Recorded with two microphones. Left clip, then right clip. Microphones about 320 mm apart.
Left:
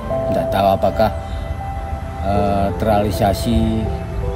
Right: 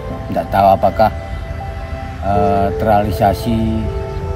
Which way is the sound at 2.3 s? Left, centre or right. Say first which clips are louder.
Right 4 dB; centre.